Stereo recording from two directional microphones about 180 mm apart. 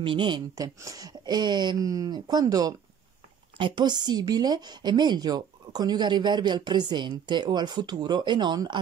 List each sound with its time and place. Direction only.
0.0 s a woman's voice: 30° right (ahead or behind)